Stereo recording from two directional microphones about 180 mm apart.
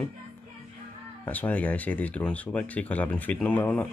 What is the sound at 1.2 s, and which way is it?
Speech, 10° left (ahead or behind).